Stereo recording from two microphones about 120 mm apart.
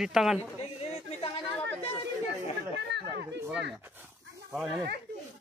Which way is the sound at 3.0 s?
20° right (ahead or behind).